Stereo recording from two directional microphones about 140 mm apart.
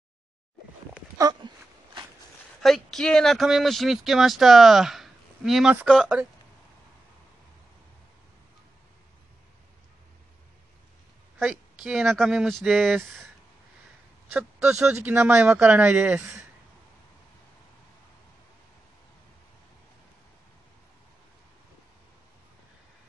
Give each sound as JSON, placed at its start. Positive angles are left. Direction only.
{"t": 1.1, "sound": "a sound", "side_deg": -25}
{"t": 2.6, "sound": "speech", "side_deg": 0}
{"t": 11.3, "sound": "speech", "side_deg": 0}
{"t": 14.3, "sound": "speech", "side_deg": -10}